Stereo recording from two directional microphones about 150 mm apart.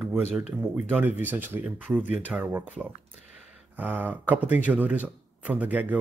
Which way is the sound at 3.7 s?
10° right (ahead or behind).